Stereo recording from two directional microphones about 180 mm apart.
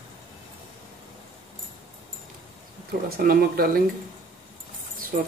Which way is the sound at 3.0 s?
55° right (ahead or behind).